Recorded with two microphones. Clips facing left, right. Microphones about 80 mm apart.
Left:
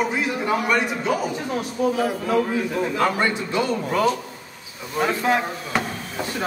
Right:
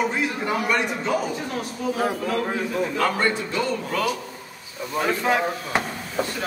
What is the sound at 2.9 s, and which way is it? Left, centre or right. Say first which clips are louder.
A man's voice: left 1 dB; centre.